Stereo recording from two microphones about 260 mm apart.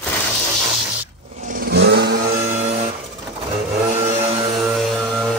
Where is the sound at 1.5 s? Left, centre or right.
Right.